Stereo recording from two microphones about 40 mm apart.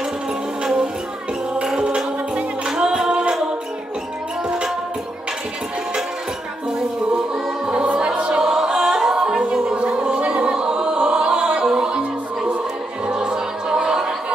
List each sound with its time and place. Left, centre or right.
1.8 s music: right
2.7 s a capella: centre
7.8 s music: right
13.1 s music: right